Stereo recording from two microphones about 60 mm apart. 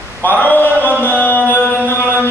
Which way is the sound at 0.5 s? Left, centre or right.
Left.